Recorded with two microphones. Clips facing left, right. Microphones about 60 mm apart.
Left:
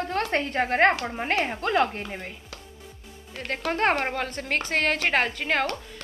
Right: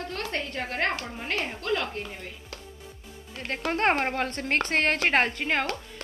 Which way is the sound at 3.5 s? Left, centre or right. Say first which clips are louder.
Left 1 dB; centre.